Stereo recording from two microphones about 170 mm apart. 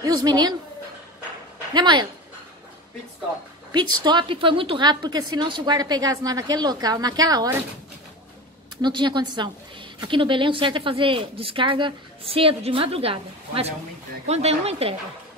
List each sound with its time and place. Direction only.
0.0 s a woman's voice: 25° right (ahead or behind)
1.7 s a woman's voice: 25° right (ahead or behind)
3.7 s a woman's voice: 25° right (ahead or behind)
8.8 s a woman's voice: 25° right (ahead or behind)